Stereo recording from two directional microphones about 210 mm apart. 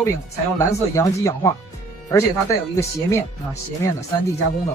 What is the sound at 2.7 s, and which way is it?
Speech, 15° left (ahead or behind).